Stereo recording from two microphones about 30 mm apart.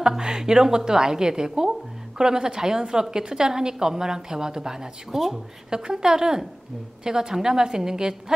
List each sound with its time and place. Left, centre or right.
0.2 s a woman's voice: right
5.7 s a woman's voice: right